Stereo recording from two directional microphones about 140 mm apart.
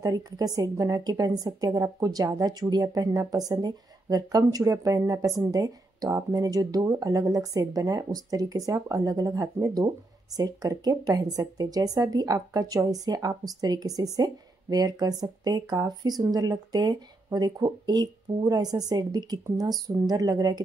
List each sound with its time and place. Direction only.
0.0 s a woman's voice: 25° right (ahead or behind)